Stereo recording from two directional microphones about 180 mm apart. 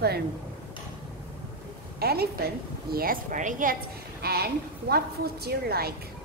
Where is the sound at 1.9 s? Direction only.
60° right (ahead or behind).